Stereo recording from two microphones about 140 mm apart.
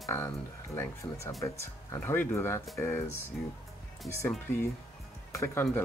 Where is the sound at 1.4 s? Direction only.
20° left (ahead or behind).